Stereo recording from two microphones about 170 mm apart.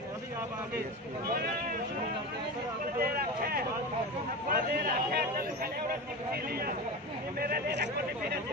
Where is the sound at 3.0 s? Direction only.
60° right (ahead or behind).